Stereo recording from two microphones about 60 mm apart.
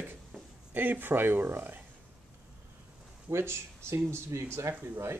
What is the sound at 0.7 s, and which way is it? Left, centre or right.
Speech, right.